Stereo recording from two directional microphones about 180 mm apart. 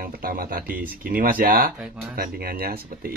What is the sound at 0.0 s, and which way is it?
Speech, 55° right (ahead or behind).